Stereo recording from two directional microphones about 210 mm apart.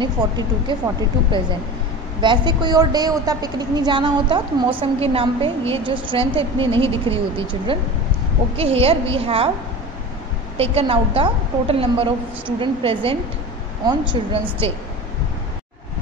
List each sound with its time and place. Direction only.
0.0 s a woman's voice: 20° right (ahead or behind)
2.2 s a woman's voice: 20° right (ahead or behind)
10.6 s a woman's voice: 25° right (ahead or behind)